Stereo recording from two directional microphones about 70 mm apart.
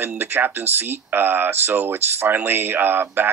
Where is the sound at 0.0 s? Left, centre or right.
Right.